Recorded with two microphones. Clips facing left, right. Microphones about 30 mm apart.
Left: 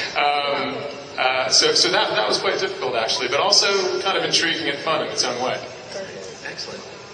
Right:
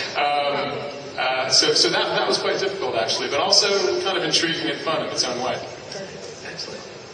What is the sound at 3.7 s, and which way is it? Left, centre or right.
Speech, left.